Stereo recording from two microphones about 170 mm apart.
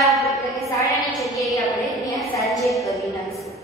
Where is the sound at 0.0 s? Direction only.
Centre (ahead or behind).